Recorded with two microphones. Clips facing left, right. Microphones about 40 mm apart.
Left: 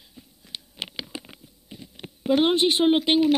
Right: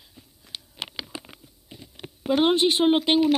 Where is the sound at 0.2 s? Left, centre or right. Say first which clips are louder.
Left 4 dB; centre.